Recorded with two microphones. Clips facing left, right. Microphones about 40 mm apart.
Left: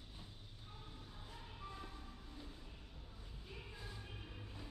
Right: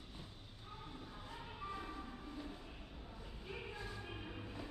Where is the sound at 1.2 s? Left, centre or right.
Right.